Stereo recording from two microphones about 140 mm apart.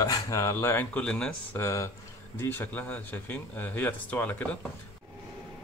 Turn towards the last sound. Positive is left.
turn(degrees=10)  # may be behind; listen again after turning